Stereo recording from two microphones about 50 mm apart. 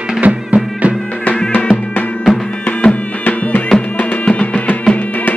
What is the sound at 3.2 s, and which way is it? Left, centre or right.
Music, left.